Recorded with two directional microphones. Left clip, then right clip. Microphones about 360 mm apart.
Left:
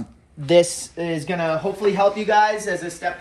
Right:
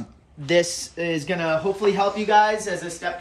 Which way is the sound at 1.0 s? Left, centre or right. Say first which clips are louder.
Left 1 dB; centre.